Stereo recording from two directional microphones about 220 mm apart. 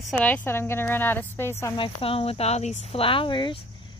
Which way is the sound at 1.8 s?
25° left (ahead or behind).